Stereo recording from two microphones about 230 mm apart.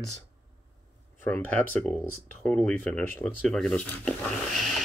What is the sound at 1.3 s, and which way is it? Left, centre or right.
Speech, centre.